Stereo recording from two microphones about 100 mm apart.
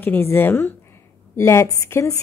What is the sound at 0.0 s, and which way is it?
A woman's voice, 20° left (ahead or behind).